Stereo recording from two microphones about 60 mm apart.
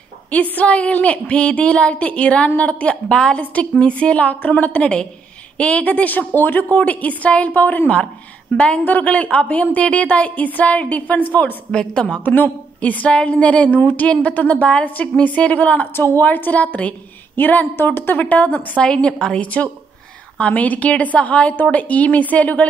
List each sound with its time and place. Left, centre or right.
0.3 s a woman's voice: left
8.5 s a woman's voice: centre
11.7 s a woman's voice: centre
12.4 s a woman's voice: left
18.8 s a woman's voice: centre